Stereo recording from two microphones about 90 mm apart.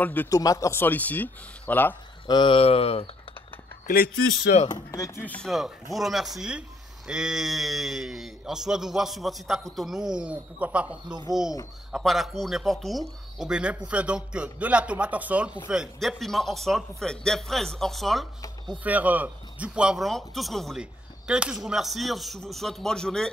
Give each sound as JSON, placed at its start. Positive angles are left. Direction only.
{"t": 0.0, "sound": "a man's voice", "side_deg": 20}
{"t": 0.3, "sound": "a man's voice", "side_deg": 40}
{"t": 2.2, "sound": "speech", "side_deg": 60}
{"t": 4.6, "sound": "speech", "side_deg": 45}
{"t": 5.2, "sound": "speech", "side_deg": 15}
{"t": 5.5, "sound": "speech", "side_deg": 0}
{"t": 10.1, "sound": "speech", "side_deg": -15}
{"t": 11.9, "sound": "speech", "side_deg": 0}
{"t": 13.5, "sound": "speech", "side_deg": -15}
{"t": 16.0, "sound": "speech", "side_deg": 5}
{"t": 18.9, "sound": "speech", "side_deg": -15}
{"t": 20.0, "sound": "speech", "side_deg": 0}
{"t": 20.7, "sound": "speech", "side_deg": -10}